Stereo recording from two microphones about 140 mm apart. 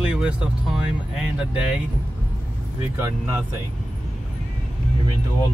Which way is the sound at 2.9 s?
20° right (ahead or behind).